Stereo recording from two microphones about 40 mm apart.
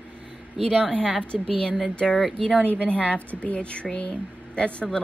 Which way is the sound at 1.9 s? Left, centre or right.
Left.